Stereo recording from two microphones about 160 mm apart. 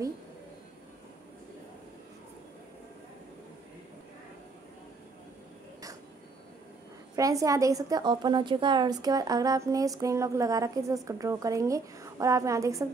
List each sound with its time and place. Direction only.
7.2 s a woman's voice: 20° right (ahead or behind)